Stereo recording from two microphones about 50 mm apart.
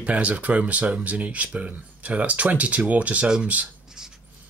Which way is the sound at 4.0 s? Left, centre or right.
Centre.